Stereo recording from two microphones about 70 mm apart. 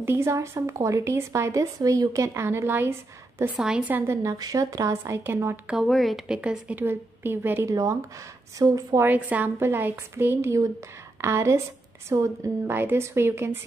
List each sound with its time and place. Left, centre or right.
0.0 s a woman's voice: right
1.8 s a woman's voice: right
3.5 s speech: centre
4.1 s a woman's voice: right
4.4 s a woman's voice: right
5.9 s a woman's voice: centre
6.2 s speech: centre
6.7 s a woman's voice: right
7.6 s a woman's voice: right
9.0 s a woman's voice: right
12.6 s a woman's voice: right